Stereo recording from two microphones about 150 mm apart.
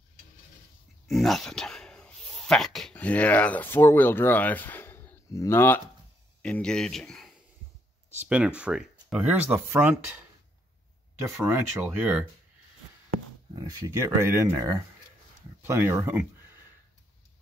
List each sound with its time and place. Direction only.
1.0 s speech: centre (ahead or behind)
11.2 s speech: 10° right (ahead or behind)
13.6 s speech: 25° right (ahead or behind)